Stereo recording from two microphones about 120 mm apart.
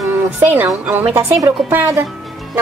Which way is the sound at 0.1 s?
20° right (ahead or behind).